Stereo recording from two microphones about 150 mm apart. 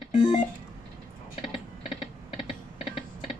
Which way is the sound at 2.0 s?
40° left (ahead or behind).